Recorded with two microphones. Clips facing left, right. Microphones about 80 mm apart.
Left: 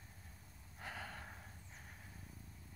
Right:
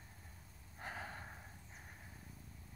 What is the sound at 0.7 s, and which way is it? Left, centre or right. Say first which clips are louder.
Gasp: right 2 dB; centre.